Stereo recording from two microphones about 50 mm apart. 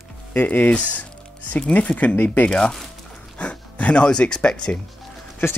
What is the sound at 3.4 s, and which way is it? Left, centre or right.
Speech, left.